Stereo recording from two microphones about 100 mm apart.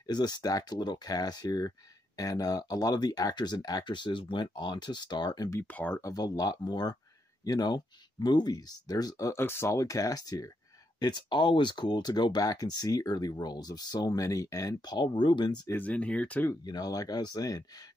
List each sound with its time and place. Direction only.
0.0 s speech: 45° left (ahead or behind)
5.6 s speech: 15° left (ahead or behind)
5.9 s speech: 35° left (ahead or behind)
9.4 s speech: 25° left (ahead or behind); by 15.7 s 45° left (ahead or behind)
15.7 s speech: 15° left (ahead or behind)
16.6 s speech: 40° left (ahead or behind)